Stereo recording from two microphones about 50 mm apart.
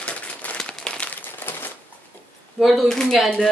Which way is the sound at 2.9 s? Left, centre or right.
Centre.